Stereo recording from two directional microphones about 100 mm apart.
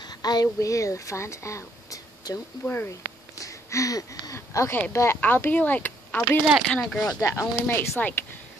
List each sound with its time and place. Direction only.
0.0 s speech: 45° left (ahead or behind)
2.6 s speech: 20° left (ahead or behind)
2.9 s a sound: 35° left (ahead or behind)
4.9 s speech: 25° left (ahead or behind)
6.7 s speech: 5° left (ahead or behind)
7.5 s speech: 20° left (ahead or behind)